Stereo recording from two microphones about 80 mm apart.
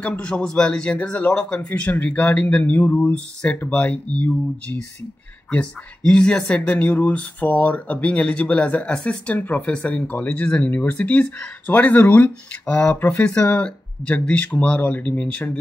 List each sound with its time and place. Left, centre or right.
0.0 s speech: centre
5.5 s speech: centre
6.6 s speech: left